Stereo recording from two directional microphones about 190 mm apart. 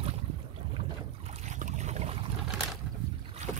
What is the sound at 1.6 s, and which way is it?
Boat, 40° right (ahead or behind).